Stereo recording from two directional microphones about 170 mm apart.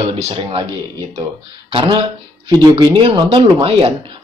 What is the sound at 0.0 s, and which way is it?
Speech, 30° right (ahead or behind).